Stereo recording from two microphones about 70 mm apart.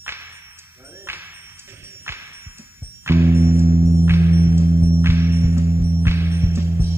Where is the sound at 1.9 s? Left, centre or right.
Right.